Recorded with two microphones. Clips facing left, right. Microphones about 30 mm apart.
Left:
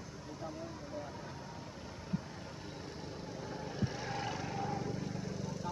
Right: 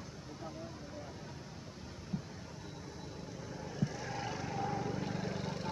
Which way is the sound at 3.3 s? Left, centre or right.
Centre.